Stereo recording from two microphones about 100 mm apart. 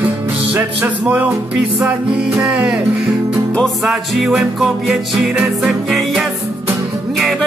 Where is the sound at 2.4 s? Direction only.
10° right (ahead or behind).